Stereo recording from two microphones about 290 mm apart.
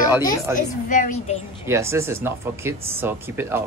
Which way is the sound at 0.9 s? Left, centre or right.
Left.